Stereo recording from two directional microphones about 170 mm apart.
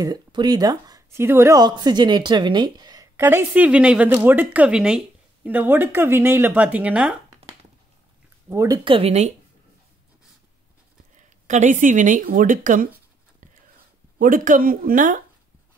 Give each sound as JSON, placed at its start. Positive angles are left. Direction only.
{"t": 0.0, "sound": "speech", "side_deg": -25}
{"t": 8.5, "sound": "speech", "side_deg": -20}
{"t": 11.4, "sound": "a woman's voice", "side_deg": -45}
{"t": 14.1, "sound": "a woman's voice", "side_deg": -55}